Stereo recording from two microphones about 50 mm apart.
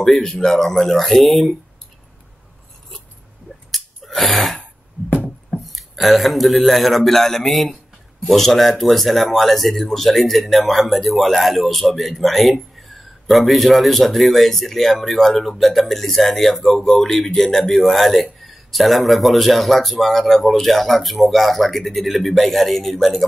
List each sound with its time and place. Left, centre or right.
0.0 s speech: centre
3.7 s a sound: centre
5.6 s speech: centre